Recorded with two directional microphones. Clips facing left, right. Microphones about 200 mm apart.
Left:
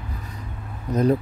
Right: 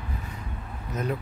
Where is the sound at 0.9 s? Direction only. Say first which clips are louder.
Left 10 dB; 35° left (ahead or behind).